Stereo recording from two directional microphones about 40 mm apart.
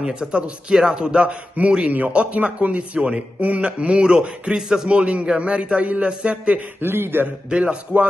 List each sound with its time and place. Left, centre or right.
0.0 s a man's voice: right
1.9 s speech: right
4.6 s a man's voice: centre
4.8 s a man's voice: right
6.8 s a man's voice: right
7.4 s a man's voice: right